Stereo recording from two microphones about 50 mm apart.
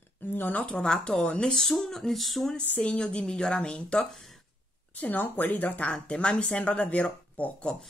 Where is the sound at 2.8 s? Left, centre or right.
Centre.